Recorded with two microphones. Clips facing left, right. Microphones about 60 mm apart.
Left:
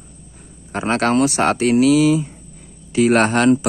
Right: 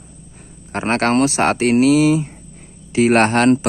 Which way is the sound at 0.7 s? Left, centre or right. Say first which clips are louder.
Right 1 dB; right.